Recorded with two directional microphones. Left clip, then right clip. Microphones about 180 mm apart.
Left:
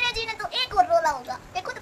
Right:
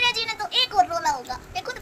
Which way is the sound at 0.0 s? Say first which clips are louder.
Right 3 dB; 15° left (ahead or behind).